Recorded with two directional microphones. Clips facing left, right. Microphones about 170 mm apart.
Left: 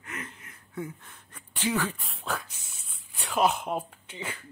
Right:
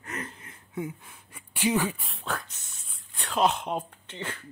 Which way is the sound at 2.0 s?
Centre (ahead or behind).